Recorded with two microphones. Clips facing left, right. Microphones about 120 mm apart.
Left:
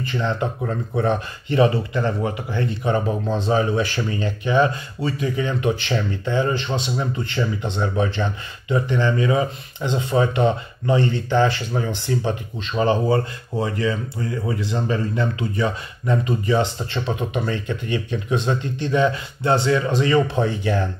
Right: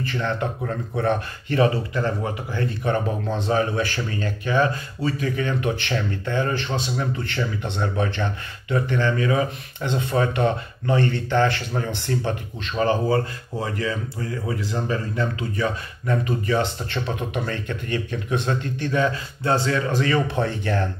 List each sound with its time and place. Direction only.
0.0 s speech: 20° left (ahead or behind)